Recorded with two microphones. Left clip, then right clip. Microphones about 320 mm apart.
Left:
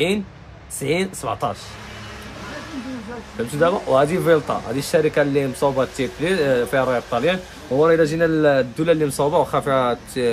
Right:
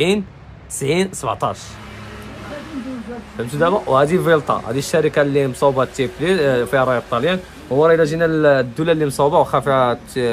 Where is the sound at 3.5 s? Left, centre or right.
Centre.